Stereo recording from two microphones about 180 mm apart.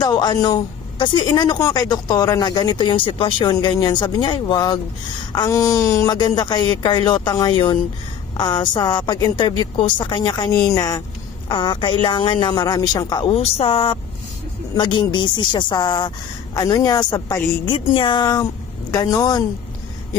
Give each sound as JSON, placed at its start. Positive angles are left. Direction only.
{"t": 0.0, "sound": "a woman's voice", "side_deg": 20}